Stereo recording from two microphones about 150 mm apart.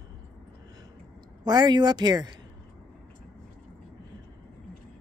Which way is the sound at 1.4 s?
30° right (ahead or behind).